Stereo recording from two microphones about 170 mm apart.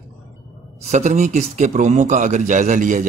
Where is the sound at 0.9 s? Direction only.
45° right (ahead or behind).